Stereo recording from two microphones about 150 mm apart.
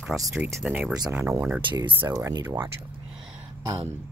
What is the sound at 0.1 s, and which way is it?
Speech, 5° right (ahead or behind).